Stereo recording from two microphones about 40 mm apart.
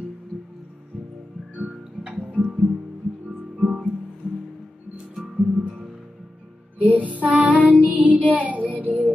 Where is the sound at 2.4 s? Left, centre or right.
Left.